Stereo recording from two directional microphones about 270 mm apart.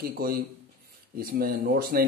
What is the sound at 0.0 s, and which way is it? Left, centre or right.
A man's voice, right.